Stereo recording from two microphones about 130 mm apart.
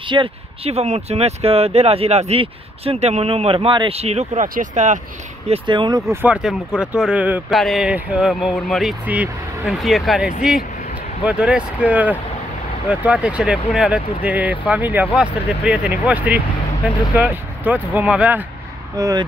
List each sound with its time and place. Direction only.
0.1 s speech: 45° right (ahead or behind); by 5.0 s 80° right
5.5 s speech: 40° right (ahead or behind)
6.2 s speech: 10° right (ahead or behind)
7.5 s speech: centre (ahead or behind)
9.0 s speech: 10° right (ahead or behind)
9.8 s speech: centre (ahead or behind)
18.9 s speech: 25° right (ahead or behind)